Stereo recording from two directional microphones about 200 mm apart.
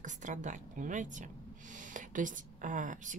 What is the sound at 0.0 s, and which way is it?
Speech, 40° right (ahead or behind).